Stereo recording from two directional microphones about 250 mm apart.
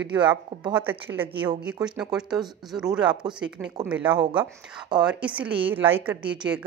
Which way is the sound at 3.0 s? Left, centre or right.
Centre.